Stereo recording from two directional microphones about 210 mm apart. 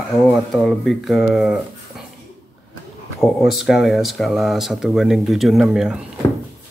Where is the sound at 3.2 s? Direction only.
Centre (ahead or behind).